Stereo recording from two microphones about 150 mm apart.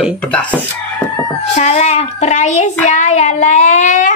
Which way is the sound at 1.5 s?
50° left (ahead or behind).